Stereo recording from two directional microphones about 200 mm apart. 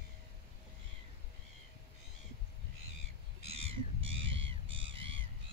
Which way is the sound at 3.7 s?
25° right (ahead or behind).